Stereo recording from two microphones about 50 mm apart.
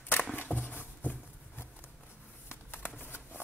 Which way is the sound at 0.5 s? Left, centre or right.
Left.